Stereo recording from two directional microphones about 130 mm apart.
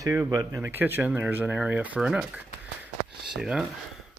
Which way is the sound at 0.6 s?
15° right (ahead or behind).